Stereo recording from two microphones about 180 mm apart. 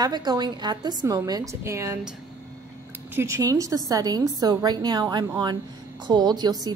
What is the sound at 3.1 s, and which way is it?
A woman's voice, 15° right (ahead or behind).